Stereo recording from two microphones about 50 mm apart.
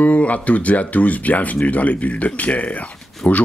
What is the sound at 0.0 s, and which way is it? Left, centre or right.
Speech, left.